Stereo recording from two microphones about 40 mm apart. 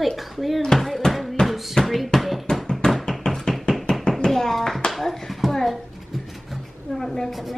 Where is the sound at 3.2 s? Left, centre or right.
Centre.